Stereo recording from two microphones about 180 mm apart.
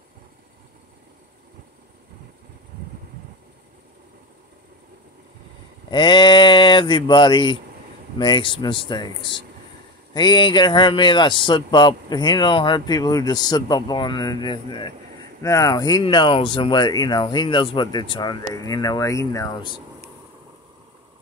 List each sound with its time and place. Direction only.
5.9 s speech: 25° left (ahead or behind)